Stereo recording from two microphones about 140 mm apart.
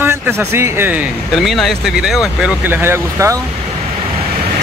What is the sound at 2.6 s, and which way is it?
Speech, 15° right (ahead or behind).